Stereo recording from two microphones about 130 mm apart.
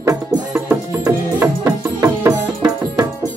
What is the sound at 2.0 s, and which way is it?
Music, 25° right (ahead or behind).